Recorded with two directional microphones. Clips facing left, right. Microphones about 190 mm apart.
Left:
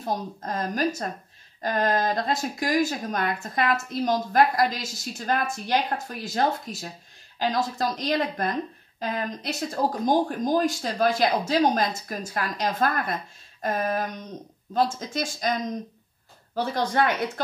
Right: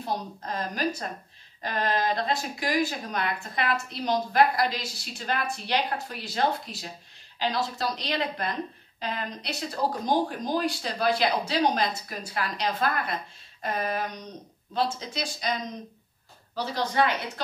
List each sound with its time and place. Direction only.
0.0 s speech: 45° left (ahead or behind)